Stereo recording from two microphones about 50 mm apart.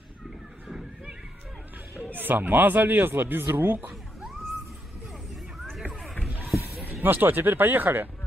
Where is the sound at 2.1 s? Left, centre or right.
Right.